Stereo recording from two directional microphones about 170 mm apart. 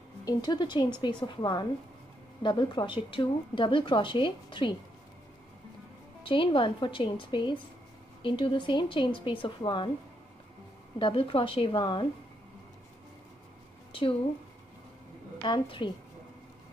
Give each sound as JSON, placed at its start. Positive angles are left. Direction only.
{"t": 0.2, "sound": "speech", "side_deg": 25}
{"t": 6.2, "sound": "speech", "side_deg": 30}
{"t": 11.0, "sound": "a woman's voice", "side_deg": 30}
{"t": 15.4, "sound": "speech", "side_deg": 25}